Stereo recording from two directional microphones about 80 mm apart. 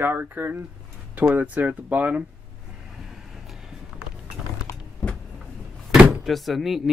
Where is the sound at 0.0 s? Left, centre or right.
Right.